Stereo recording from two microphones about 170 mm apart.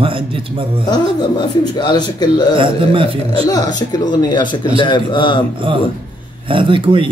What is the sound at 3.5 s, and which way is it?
Speech, 25° left (ahead or behind).